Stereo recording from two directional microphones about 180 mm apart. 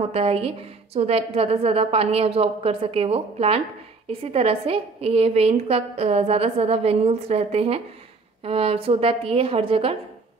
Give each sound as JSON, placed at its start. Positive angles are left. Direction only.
{"t": 0.1, "sound": "a woman's voice", "side_deg": -35}